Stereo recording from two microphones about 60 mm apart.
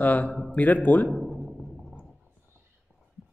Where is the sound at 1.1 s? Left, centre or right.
Centre.